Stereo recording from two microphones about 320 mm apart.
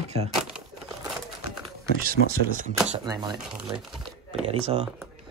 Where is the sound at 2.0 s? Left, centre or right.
Right.